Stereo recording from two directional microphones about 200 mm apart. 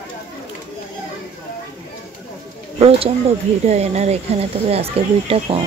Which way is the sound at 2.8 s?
30° right (ahead or behind).